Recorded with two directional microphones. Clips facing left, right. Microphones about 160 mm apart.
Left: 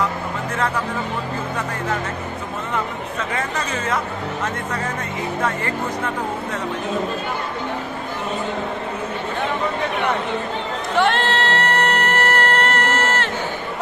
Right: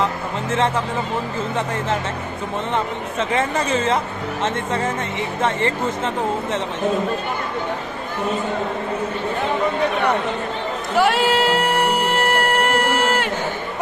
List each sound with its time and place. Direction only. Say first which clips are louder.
0.5 s speech: right 4 dB; 25° right (ahead or behind)
2.7 s speech: even; 25° right (ahead or behind)
11.0 s music: right 2 dB; 10° right (ahead or behind)